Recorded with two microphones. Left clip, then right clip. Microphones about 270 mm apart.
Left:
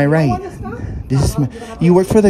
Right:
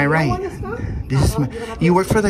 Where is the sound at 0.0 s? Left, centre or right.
Centre.